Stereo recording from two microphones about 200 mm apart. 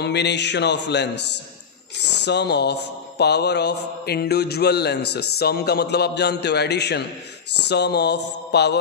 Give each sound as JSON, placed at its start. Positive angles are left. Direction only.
{"t": 0.0, "sound": "speech", "side_deg": 55}